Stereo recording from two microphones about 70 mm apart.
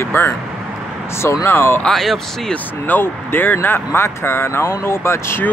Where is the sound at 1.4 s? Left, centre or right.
Left.